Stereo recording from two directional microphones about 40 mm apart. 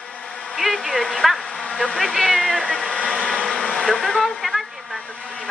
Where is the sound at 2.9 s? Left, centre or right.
Left.